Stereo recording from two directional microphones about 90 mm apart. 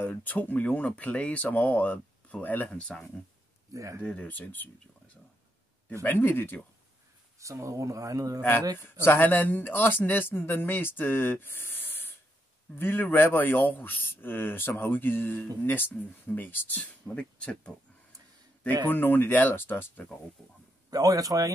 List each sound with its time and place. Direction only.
0.0 s speech: 20° left (ahead or behind)
2.8 s speech: 10° left (ahead or behind)
3.7 s speech: 35° right (ahead or behind)
4.0 s speech: 15° left (ahead or behind)
6.0 s speech: 25° left (ahead or behind)
7.3 s speech: 35° right (ahead or behind)
8.4 s speech: 25° left (ahead or behind)
18.9 s speech: 20° left (ahead or behind)
20.4 s a man's voice: 5° left (ahead or behind)
20.9 s speech: 40° right (ahead or behind)